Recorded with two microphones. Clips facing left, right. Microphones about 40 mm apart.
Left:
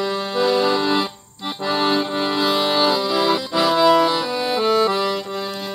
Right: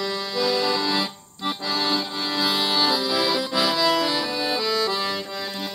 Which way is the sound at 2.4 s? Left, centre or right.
Centre.